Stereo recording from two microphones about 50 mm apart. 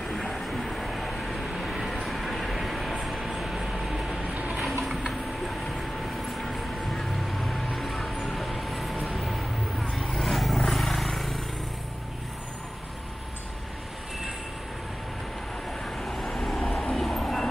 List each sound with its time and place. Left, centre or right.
0.1 s vehicle: centre
4.3 s a sound: right
4.6 s a sound: centre
6.3 s vehicle: centre
15.8 s vehicle: centre
17.1 s train: centre